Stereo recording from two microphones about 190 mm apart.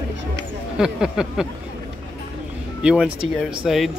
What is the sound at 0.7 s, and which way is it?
Speech, 5° right (ahead or behind).